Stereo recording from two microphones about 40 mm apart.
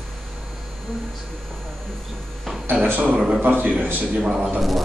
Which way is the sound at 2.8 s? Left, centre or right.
Right.